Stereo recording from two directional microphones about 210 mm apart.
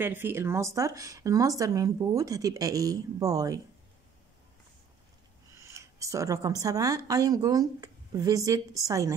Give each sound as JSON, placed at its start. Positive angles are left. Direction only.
{"t": 0.0, "sound": "speech", "side_deg": -10}
{"t": 5.6, "sound": "speech", "side_deg": -15}